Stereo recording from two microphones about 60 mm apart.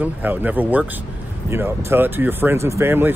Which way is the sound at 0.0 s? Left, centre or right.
Right.